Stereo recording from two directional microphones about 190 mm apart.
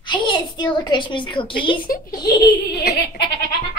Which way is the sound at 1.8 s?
50° left (ahead or behind).